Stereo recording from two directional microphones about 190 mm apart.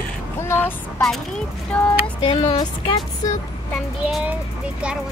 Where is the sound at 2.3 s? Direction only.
25° left (ahead or behind).